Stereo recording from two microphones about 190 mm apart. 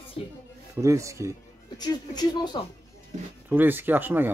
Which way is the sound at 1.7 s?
20° left (ahead or behind).